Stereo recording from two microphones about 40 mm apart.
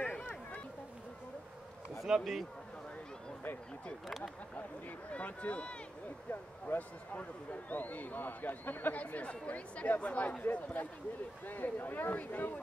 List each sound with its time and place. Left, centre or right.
0.0 s a sound: left
2.0 s a man's voice: centre
4.2 s a man's voice: left
8.9 s a man's voice: left